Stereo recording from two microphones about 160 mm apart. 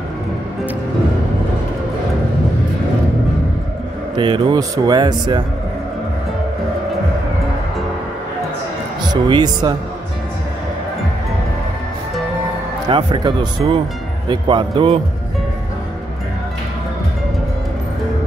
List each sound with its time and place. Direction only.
4.1 s speech: 30° right (ahead or behind)
9.0 s speech: 25° right (ahead or behind)
12.9 s speech: 30° right (ahead or behind)